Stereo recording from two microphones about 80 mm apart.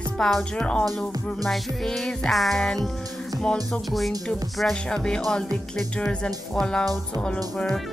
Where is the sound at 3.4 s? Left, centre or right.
Centre.